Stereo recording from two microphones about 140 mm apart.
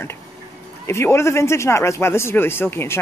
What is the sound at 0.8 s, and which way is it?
Speech, 20° left (ahead or behind).